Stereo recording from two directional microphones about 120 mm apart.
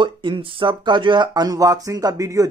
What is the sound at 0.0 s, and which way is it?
Speech, 40° right (ahead or behind).